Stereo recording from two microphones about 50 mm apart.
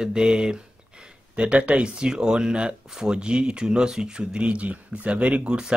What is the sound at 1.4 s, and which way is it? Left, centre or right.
Speech, right.